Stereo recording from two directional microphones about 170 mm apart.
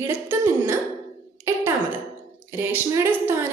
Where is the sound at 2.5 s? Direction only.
15° right (ahead or behind).